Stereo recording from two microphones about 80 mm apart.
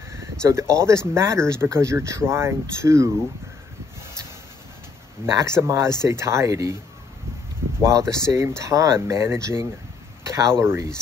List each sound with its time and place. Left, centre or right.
0.2 s speech: right
5.2 s speech: right
7.8 s speech: right